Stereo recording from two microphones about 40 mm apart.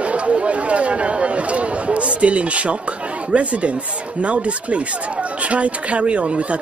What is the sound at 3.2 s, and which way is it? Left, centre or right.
Speech, right.